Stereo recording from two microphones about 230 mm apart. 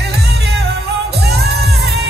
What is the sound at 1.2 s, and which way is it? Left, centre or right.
Music, right.